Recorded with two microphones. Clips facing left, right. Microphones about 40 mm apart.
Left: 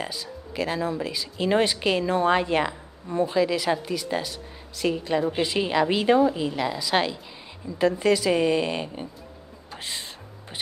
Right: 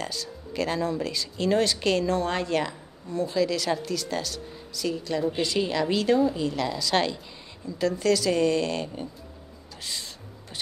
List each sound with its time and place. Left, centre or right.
0.0 s speech: centre
4.7 s a woman's voice: left
9.7 s music: left